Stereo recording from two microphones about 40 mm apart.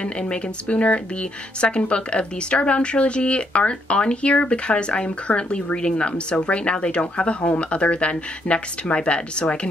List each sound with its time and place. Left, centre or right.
0.0 s a woman's voice: left